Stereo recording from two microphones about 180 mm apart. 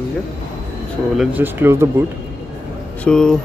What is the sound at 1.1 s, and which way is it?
Speech, 10° right (ahead or behind).